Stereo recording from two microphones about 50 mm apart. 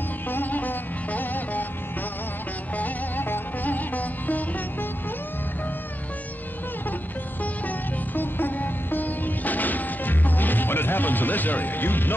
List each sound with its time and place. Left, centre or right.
0.3 s music: left
2.7 s music: left
7.6 s music: left